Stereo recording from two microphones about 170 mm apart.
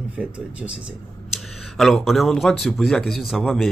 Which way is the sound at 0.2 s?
5° right (ahead or behind).